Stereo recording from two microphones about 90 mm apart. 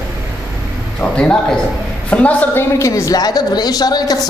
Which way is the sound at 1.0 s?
10° left (ahead or behind).